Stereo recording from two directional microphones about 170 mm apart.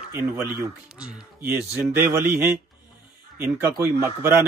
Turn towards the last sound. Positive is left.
turn(degrees=-15)  # may be behind; listen again after turning